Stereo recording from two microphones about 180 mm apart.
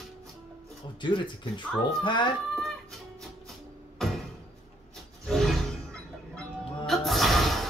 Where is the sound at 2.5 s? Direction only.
Centre (ahead or behind).